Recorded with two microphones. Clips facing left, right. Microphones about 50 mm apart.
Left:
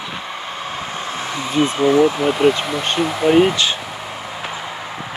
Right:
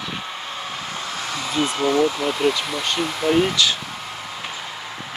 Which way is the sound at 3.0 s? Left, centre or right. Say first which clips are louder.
Left 6 dB; centre.